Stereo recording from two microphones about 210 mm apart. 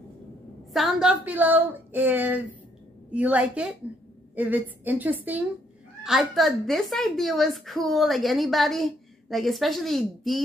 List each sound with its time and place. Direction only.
0.7 s a woman's voice: centre (ahead or behind)